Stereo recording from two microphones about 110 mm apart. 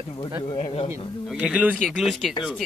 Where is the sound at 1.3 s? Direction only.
10° right (ahead or behind).